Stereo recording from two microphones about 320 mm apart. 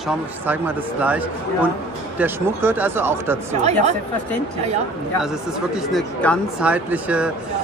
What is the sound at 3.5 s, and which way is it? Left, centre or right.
Speech, right.